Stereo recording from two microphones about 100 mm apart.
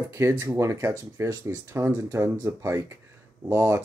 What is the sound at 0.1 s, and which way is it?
Speech, 30° right (ahead or behind).